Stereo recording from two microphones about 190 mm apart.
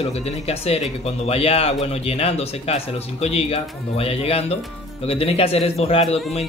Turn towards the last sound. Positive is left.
turn(degrees=30)  # may be behind; listen again after turning